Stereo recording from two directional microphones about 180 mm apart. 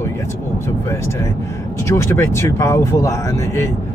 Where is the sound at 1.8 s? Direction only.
15° left (ahead or behind).